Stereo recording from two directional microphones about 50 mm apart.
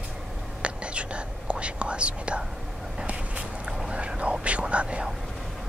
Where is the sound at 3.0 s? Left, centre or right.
Right.